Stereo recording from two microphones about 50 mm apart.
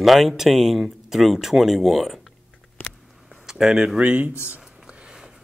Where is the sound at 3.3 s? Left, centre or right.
Centre.